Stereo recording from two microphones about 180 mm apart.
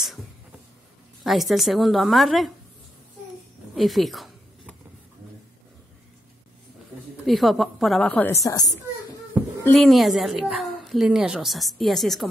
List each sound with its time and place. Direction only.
1.2 s a woman's voice: centre (ahead or behind)
3.7 s a sound: centre (ahead or behind)
7.2 s a woman's voice: centre (ahead or behind)
8.3 s a woman's voice: 20° left (ahead or behind)
9.3 s a sound: 10° right (ahead or behind)
9.8 s a woman's voice: centre (ahead or behind)